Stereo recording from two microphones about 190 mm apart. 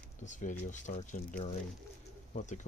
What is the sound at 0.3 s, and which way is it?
Speech, 40° left (ahead or behind).